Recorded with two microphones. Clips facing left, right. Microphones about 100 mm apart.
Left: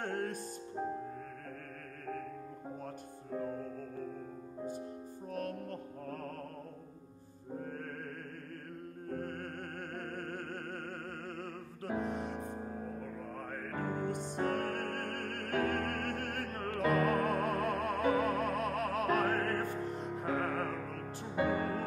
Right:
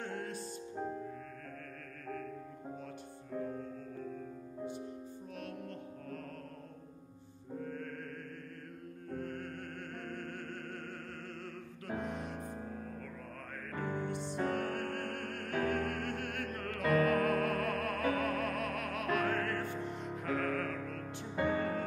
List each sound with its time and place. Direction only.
0.0 s music: 50° left (ahead or behind)
5.3 s music: 45° left (ahead or behind)
7.5 s music: 40° left (ahead or behind)
9.1 s music: 45° left (ahead or behind)
11.9 s music: 30° left (ahead or behind); by 16.0 s 55° left (ahead or behind)
16.0 s music: 40° left (ahead or behind)